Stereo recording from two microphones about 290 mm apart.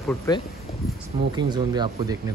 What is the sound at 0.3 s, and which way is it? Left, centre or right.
Speech, centre.